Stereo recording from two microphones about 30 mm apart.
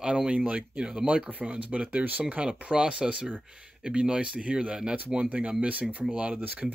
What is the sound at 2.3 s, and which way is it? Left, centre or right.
Speech, right.